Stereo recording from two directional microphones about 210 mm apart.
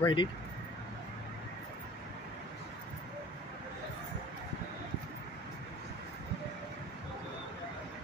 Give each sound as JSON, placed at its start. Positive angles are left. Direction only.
{"t": 0.0, "sound": "speech", "side_deg": 20}